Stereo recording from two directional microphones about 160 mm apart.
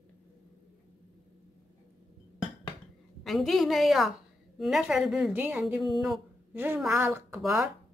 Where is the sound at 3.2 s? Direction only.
Centre (ahead or behind).